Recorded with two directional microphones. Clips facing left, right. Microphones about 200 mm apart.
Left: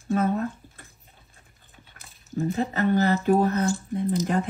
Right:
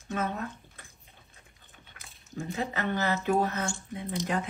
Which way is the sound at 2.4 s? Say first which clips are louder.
Left 8 dB; 45° left (ahead or behind).